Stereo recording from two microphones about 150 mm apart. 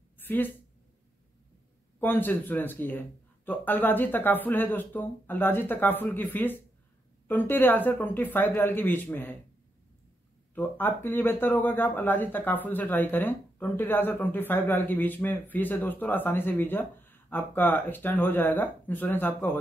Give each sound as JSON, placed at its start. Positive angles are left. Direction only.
{"t": 0.2, "sound": "a sound", "side_deg": 15}
{"t": 2.0, "sound": "speech", "side_deg": 15}
{"t": 10.5, "sound": "speech", "side_deg": 10}